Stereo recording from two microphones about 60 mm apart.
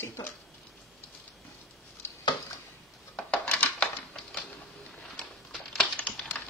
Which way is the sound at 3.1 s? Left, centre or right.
Centre.